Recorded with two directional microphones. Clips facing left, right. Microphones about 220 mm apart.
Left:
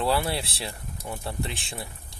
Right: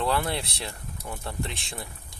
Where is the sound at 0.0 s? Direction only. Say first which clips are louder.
Left 1 dB; 5° left (ahead or behind).